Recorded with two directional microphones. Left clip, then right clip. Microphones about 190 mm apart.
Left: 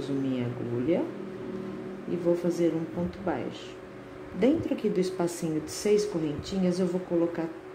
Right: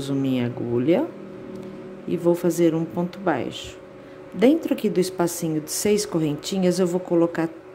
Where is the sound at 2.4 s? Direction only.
45° right (ahead or behind).